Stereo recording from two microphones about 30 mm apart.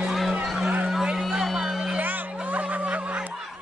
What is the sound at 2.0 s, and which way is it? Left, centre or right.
Music, right.